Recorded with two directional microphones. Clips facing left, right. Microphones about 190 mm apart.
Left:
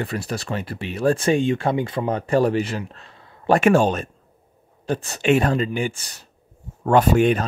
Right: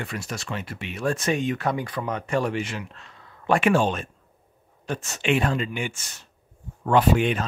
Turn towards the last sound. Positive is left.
turn(degrees=45)  # may be behind; listen again after turning